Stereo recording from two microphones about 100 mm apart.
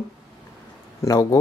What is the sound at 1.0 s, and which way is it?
Speech, 35° left (ahead or behind).